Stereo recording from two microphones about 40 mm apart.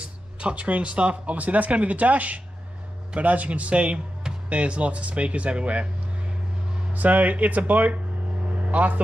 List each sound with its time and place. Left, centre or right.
0.0 s speech: right
6.9 s speech: right